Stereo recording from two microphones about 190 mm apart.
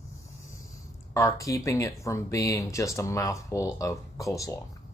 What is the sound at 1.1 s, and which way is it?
Speech, 15° left (ahead or behind).